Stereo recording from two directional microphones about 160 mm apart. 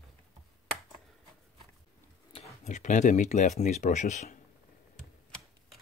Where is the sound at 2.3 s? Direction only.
45° left (ahead or behind).